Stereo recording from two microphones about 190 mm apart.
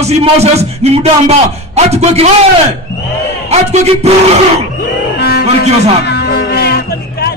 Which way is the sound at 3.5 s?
35° right (ahead or behind).